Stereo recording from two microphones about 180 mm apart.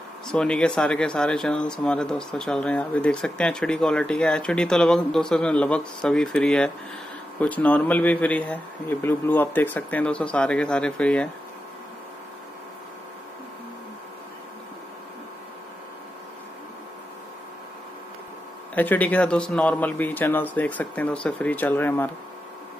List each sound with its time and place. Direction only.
0.3 s speech: 5° left (ahead or behind)
18.8 s speech: 10° left (ahead or behind)